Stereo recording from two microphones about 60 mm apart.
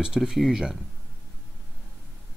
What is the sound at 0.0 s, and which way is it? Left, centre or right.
Speech, centre.